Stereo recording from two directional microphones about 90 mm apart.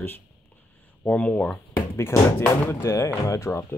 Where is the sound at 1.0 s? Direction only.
15° left (ahead or behind).